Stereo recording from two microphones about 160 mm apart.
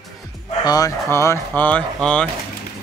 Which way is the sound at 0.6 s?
25° left (ahead or behind).